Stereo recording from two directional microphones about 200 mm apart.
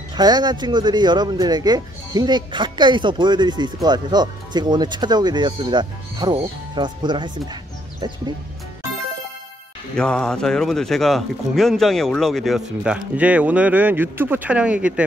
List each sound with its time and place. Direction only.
0.1 s speech: 20° right (ahead or behind)
9.9 s speech: 5° left (ahead or behind)